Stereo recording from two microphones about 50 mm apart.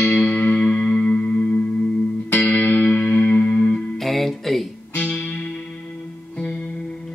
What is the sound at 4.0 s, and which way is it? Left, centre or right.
Music, centre.